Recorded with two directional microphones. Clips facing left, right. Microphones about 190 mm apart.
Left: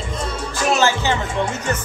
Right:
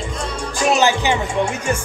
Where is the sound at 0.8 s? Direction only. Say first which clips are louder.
Right 2 dB; 15° right (ahead or behind).